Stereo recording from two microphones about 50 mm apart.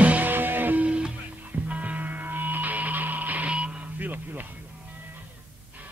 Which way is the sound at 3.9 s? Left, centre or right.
Right.